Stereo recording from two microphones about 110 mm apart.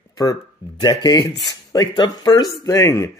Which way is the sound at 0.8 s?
35° left (ahead or behind).